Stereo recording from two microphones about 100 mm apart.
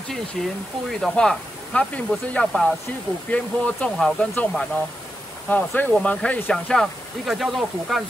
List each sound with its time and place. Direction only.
0.4 s speech: 5° left (ahead or behind)
6.5 s speech: 5° left (ahead or behind)